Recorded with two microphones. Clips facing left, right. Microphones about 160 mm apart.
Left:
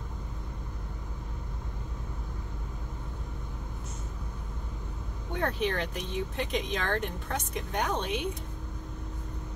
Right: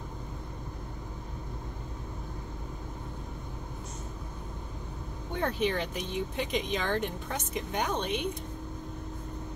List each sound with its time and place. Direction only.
5.3 s speech: centre (ahead or behind)